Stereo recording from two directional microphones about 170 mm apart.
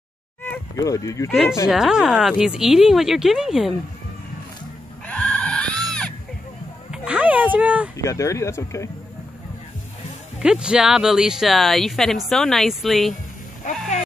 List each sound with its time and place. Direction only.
0.4 s a sound: 15° left (ahead or behind)
1.3 s speech: centre (ahead or behind)
5.0 s screaming: 5° left (ahead or behind)
6.9 s a sound: 10° right (ahead or behind)
8.0 s speech: 20° left (ahead or behind)
10.4 s speech: 5° right (ahead or behind)
13.6 s speech: 50° left (ahead or behind)